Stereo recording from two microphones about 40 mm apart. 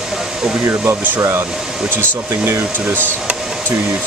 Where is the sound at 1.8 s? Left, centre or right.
Right.